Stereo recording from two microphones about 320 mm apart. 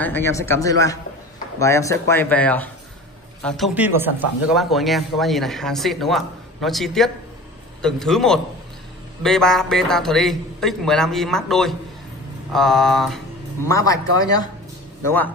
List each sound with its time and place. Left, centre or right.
0.0 s speech: centre